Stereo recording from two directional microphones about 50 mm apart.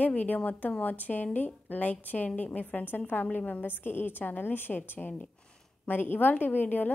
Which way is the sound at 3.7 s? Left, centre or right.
Left.